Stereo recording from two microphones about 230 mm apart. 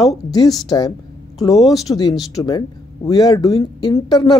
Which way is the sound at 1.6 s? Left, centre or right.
Centre.